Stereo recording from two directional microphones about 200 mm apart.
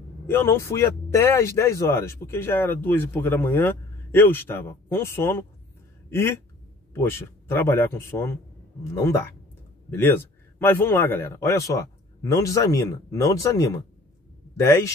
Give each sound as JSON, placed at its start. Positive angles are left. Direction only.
{"t": 0.3, "sound": "speech", "side_deg": 10}